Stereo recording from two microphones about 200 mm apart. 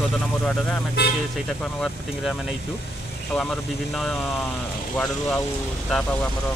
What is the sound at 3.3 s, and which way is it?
Speech, centre (ahead or behind).